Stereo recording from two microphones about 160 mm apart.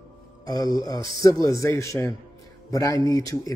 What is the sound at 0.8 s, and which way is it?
Speech, 25° left (ahead or behind).